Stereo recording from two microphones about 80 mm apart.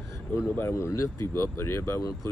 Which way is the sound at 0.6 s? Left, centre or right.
Left.